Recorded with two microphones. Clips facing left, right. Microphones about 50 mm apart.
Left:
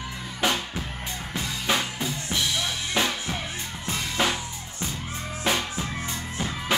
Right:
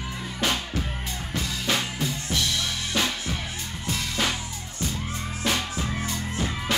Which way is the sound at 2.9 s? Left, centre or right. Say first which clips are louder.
Left 1 dB; centre.